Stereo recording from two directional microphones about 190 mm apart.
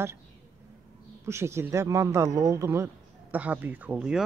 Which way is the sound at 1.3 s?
15° right (ahead or behind).